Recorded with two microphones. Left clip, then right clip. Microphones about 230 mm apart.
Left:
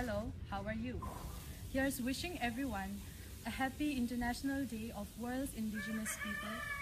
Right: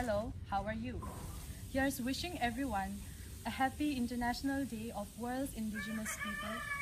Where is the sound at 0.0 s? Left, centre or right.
Centre.